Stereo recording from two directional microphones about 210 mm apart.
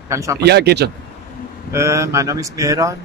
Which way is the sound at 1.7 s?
15° right (ahead or behind).